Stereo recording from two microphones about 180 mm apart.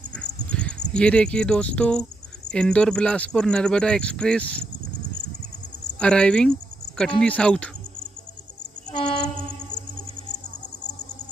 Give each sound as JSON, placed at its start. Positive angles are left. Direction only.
{"t": 0.5, "sound": "speech", "side_deg": 5}
{"t": 5.9, "sound": "speech", "side_deg": 5}